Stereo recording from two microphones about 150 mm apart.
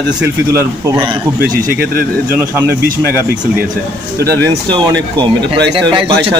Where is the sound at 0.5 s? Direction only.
20° right (ahead or behind).